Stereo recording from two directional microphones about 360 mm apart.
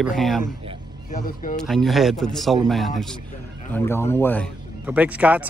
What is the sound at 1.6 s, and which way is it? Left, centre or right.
Speech, centre.